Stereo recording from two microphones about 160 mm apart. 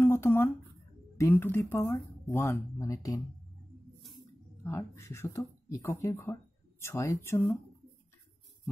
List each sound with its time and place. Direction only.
0.0 s a sound: 15° left (ahead or behind)
1.1 s speech: 15° left (ahead or behind)
4.6 s speech: 15° left (ahead or behind)